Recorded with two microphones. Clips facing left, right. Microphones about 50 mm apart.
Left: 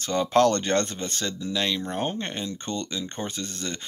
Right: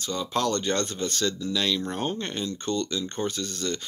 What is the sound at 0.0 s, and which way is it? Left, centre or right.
Speech, left.